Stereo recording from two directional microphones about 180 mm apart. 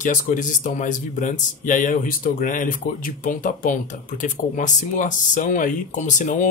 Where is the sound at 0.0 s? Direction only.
45° left (ahead or behind).